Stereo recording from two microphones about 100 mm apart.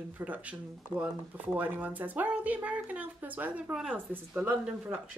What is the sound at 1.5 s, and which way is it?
Speech, 15° right (ahead or behind).